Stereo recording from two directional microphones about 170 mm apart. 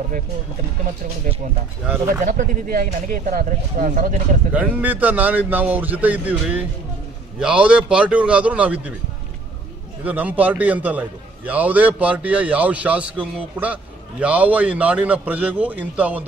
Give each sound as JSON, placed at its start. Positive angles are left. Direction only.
{"t": 2.2, "sound": "speech", "side_deg": -55}
{"t": 4.6, "sound": "a man's voice", "side_deg": -10}
{"t": 10.0, "sound": "a man's voice", "side_deg": -10}